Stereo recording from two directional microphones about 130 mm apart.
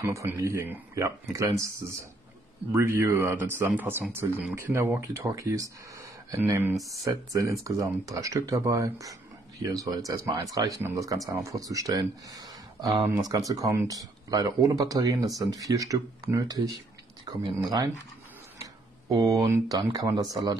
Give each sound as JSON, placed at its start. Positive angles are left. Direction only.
{"t": 0.0, "sound": "speech", "side_deg": -25}
{"t": 2.7, "sound": "a man's voice", "side_deg": -20}